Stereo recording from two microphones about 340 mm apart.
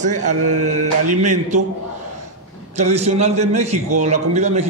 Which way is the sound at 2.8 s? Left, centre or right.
Centre.